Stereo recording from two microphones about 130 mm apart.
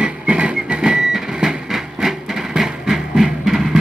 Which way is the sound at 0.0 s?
10° right (ahead or behind).